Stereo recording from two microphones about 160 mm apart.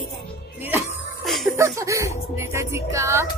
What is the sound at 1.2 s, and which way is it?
Music, centre (ahead or behind).